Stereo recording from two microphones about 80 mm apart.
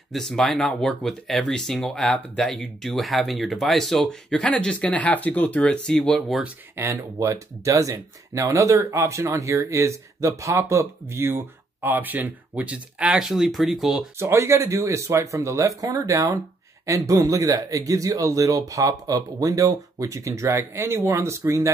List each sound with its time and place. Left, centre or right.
0.1 s speech: centre
6.8 s speech: right; by 14.0 s centre
14.1 s speech: right